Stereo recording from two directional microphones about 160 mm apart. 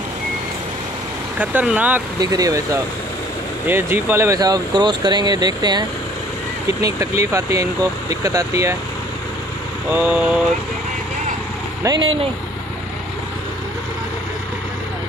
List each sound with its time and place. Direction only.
1.4 s speech: 10° right (ahead or behind)
2.1 s speech: 25° right (ahead or behind)
9.9 s speech: 10° right (ahead or behind)
11.8 s speech: 25° right (ahead or behind)